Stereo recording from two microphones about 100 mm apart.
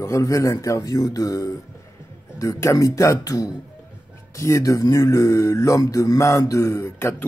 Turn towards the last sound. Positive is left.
turn(degrees=25)  # may be behind; listen again after turning